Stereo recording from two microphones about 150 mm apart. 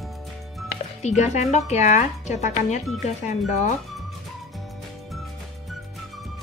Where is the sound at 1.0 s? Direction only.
50° left (ahead or behind).